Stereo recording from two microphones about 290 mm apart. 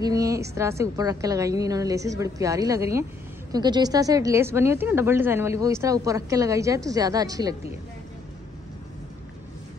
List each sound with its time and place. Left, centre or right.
0.0 s a woman's voice: centre